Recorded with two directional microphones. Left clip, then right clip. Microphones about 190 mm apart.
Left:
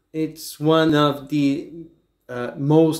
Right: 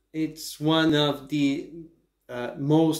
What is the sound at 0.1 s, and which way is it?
Speech, 50° left (ahead or behind).